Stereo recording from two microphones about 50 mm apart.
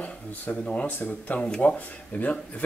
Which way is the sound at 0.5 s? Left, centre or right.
Left.